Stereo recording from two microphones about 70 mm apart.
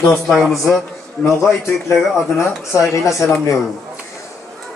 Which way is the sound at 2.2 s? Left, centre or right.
Left.